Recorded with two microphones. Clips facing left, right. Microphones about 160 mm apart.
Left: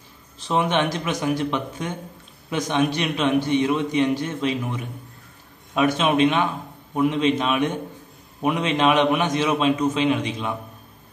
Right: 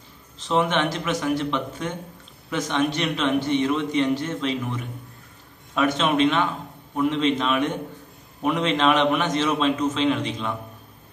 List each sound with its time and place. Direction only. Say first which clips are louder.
0.5 s a man's voice: left 1 dB; 15° left (ahead or behind)